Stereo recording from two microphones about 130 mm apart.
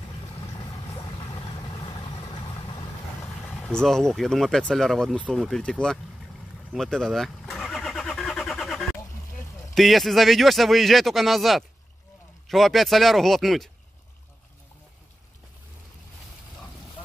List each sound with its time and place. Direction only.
0.6 s vehicle: 35° left (ahead or behind)
3.4 s speech: 10° left (ahead or behind)
6.7 s vehicle: 5° left (ahead or behind)
9.8 s speech: centre (ahead or behind)